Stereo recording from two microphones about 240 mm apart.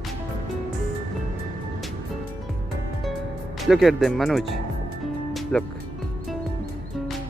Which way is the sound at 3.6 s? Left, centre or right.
Centre.